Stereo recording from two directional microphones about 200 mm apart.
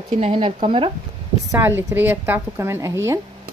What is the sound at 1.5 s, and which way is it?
Speech, 10° right (ahead or behind).